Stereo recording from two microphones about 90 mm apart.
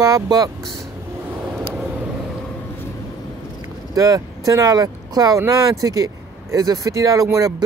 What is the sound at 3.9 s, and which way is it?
Speech, 40° right (ahead or behind).